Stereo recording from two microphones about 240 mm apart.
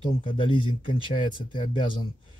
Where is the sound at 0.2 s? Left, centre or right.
Left.